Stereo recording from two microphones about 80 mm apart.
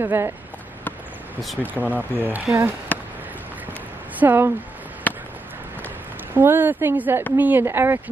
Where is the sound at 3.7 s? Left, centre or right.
Right.